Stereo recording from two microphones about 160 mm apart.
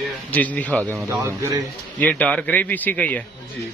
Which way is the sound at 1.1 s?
15° right (ahead or behind).